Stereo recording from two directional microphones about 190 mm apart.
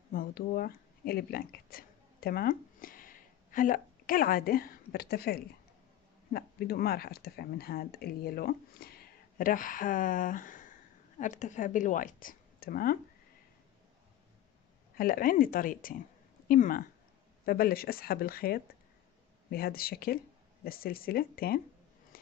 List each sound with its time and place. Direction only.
0.1 s speech: 45° left (ahead or behind)
15.0 s speech: 50° left (ahead or behind)
22.1 s a sound: 50° left (ahead or behind)